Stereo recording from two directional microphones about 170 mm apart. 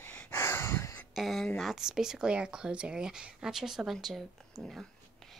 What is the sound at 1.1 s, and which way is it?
Speech, centre (ahead or behind).